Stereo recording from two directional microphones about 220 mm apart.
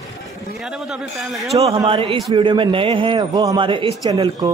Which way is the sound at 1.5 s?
20° right (ahead or behind).